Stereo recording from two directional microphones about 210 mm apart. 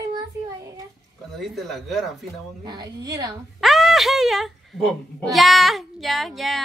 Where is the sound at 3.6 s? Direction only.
Centre (ahead or behind).